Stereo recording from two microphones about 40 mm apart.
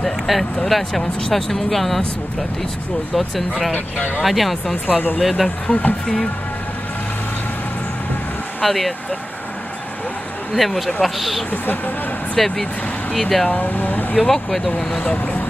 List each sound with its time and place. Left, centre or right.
0.0 s speech: centre
3.2 s speech: centre
4.8 s speech: left
5.7 s speech: left
8.6 s speech: centre
10.5 s speech: centre
11.5 s speech: left
12.4 s speech: centre
13.6 s speech: left
14.1 s speech: centre
14.9 s speech: left